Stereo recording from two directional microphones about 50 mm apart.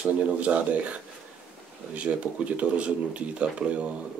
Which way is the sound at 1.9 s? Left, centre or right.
Right.